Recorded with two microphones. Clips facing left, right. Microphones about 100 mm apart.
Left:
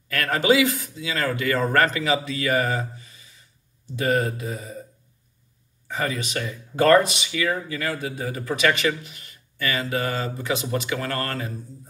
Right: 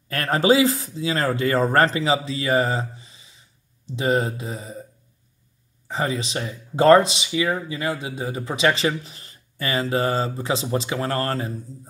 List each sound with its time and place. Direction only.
0.1 s speech: 30° right (ahead or behind)
5.9 s speech: 25° right (ahead or behind)